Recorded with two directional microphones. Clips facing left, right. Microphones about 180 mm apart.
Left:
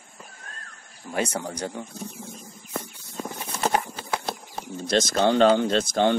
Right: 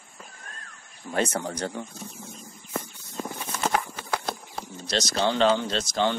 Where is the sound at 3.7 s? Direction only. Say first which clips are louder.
Left 1 dB; 30° left (ahead or behind).